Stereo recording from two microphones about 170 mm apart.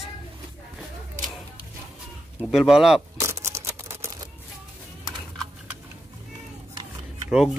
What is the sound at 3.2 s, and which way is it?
Camera, 15° right (ahead or behind).